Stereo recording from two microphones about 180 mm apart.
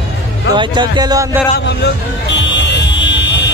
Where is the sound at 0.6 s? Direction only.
25° right (ahead or behind).